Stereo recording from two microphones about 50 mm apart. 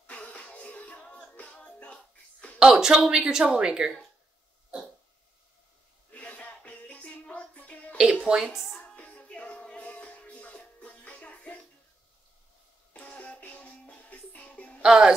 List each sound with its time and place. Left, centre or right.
0.0 s music: left
2.6 s speech: centre
6.1 s music: left
8.2 s a woman's voice: centre
8.8 s music: left
12.9 s music: left
14.8 s music: centre